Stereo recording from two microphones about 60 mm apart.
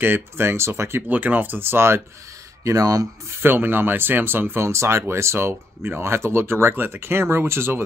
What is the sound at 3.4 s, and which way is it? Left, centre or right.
Speech, right.